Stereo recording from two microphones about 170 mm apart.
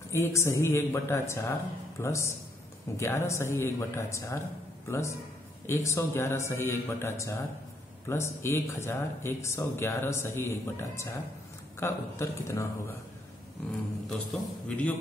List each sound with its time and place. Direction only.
0.1 s a man's voice: 15° left (ahead or behind)
14.0 s speech: 5° left (ahead or behind)